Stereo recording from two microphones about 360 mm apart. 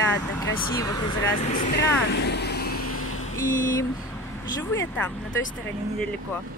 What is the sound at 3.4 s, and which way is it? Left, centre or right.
Speech, left.